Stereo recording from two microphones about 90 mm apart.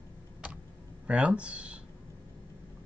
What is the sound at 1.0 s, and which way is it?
Speech, 15° right (ahead or behind).